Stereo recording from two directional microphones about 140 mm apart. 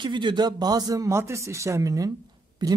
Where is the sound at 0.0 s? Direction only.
35° right (ahead or behind).